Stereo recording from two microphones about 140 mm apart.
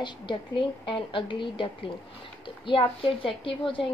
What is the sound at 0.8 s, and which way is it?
A woman's voice, 35° left (ahead or behind).